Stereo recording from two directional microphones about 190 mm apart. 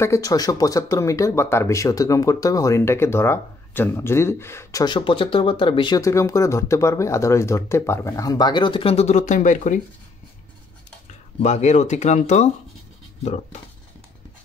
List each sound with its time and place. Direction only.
0.0 s speech: 15° left (ahead or behind); by 9.8 s 40° left (ahead or behind)
11.3 s speech: 35° left (ahead or behind)